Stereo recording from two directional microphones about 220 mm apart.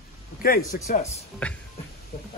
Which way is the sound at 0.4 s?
40° left (ahead or behind).